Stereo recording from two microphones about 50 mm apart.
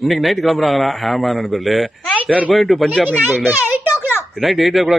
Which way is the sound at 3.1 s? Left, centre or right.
Right.